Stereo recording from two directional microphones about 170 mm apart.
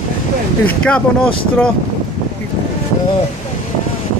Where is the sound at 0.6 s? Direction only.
5° left (ahead or behind).